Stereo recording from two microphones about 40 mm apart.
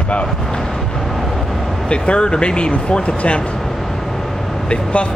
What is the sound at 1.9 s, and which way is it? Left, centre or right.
Speech, left.